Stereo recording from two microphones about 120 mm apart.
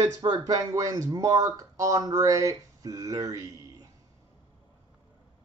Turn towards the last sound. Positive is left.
turn(degrees=-30)  # may be behind; listen again after turning